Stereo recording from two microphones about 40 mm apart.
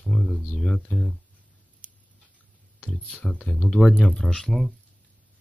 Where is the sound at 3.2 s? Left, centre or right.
Left.